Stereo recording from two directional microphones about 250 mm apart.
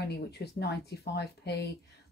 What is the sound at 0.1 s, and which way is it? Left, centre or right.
Speech, left.